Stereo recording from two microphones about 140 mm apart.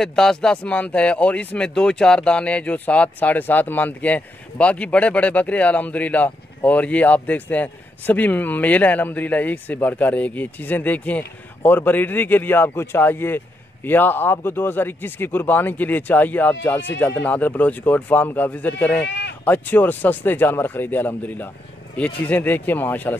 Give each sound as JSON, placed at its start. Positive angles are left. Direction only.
{"t": 0.0, "sound": "speech", "side_deg": 5}